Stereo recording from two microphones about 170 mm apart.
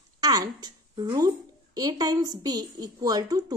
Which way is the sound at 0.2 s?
25° right (ahead or behind).